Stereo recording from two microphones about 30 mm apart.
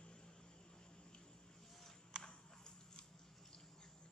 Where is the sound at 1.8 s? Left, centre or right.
Left.